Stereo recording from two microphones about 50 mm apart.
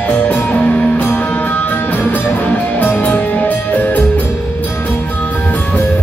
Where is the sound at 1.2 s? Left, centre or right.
Left.